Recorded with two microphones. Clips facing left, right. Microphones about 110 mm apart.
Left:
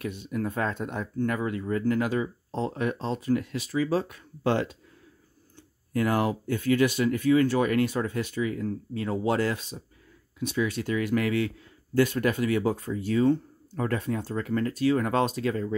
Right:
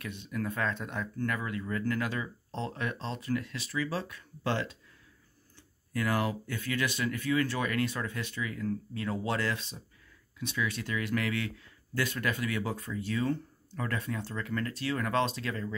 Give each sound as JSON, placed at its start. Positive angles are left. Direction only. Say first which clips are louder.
{"t": 0.0, "sound": "speech", "louder": "left 5 dB", "side_deg": 45}
{"t": 1.1, "sound": "speech", "louder": "left 7 dB", "side_deg": 30}
{"t": 2.8, "sound": "speech", "louder": "left 7 dB", "side_deg": 45}
{"t": 5.9, "sound": "speech", "louder": "left 5 dB", "side_deg": 45}
{"t": 8.4, "sound": "speech", "louder": "left 3 dB", "side_deg": 30}
{"t": 9.3, "sound": "speech", "louder": "left 8 dB", "side_deg": 45}